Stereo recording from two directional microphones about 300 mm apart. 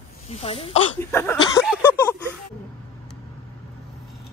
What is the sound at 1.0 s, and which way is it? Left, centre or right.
Speech, centre.